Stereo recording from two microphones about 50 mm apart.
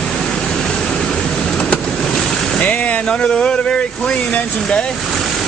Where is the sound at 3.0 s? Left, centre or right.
Centre.